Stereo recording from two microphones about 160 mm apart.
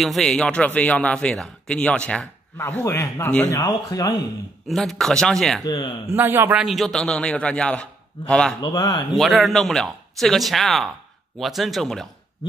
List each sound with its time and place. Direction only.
0.0 s a man's voice: centre (ahead or behind); by 4.1 s 20° left (ahead or behind)
4.6 s a man's voice: centre (ahead or behind)
5.6 s speech: 25° left (ahead or behind)
6.0 s a man's voice: 15° right (ahead or behind)
6.6 s a man's voice: centre (ahead or behind)
8.5 s speech: 25° left (ahead or behind)
9.2 s a man's voice: centre (ahead or behind)